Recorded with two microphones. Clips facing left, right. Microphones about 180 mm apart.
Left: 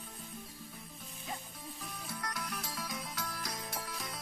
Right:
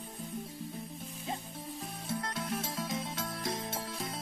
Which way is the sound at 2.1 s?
25° right (ahead or behind).